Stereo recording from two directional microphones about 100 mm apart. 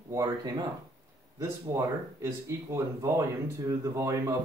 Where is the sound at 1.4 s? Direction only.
30° right (ahead or behind).